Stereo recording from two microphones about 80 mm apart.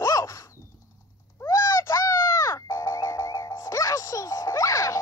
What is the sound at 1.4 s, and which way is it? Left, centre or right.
Music, left.